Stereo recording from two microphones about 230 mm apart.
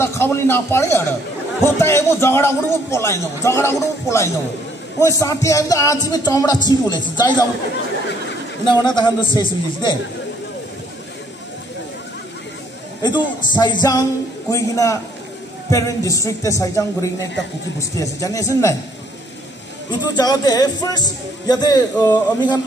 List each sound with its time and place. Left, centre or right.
0.0 s speech: centre
8.6 s a man's voice: centre
13.5 s speech: centre
19.9 s speech: centre